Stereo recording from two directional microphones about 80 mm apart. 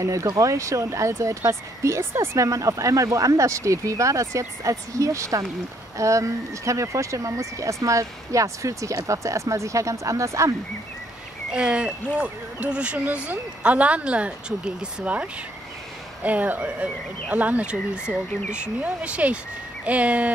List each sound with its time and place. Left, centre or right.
0.0 s speech: right
11.5 s speech: centre
16.3 s speech: right